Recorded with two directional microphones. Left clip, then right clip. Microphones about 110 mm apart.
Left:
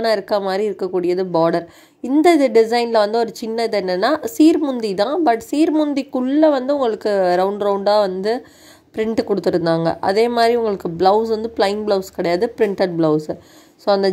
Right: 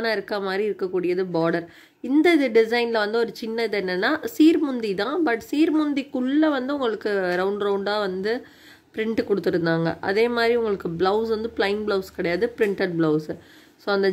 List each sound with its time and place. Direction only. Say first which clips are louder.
0.0 s a woman's voice: left 7 dB; 25° left (ahead or behind)